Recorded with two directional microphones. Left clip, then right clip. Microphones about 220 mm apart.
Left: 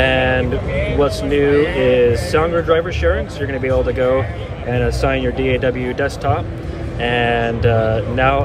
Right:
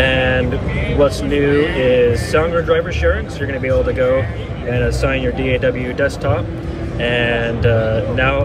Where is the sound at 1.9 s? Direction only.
5° left (ahead or behind).